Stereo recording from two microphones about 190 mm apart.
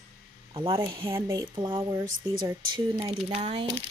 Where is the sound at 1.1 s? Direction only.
15° right (ahead or behind).